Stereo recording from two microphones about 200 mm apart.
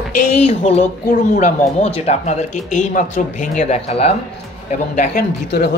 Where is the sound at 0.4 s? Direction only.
30° left (ahead or behind).